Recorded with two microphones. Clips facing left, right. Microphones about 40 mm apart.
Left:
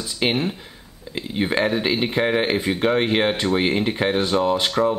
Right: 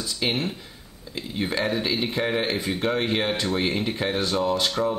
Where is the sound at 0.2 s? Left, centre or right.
Left.